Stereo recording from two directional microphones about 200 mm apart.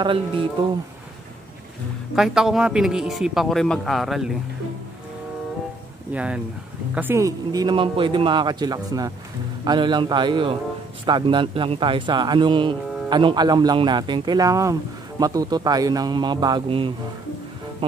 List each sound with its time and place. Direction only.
0.0 s a man's voice: 25° right (ahead or behind)
2.1 s speech: centre (ahead or behind)
6.1 s a man's voice: 5° right (ahead or behind); by 16.9 s 25° right (ahead or behind)